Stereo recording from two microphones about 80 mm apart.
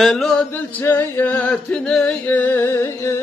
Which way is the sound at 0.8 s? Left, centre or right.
Left.